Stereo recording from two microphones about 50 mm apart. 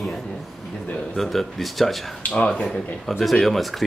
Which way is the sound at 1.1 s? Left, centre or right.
Centre.